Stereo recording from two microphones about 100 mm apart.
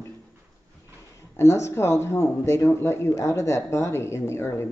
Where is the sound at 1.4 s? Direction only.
25° left (ahead or behind).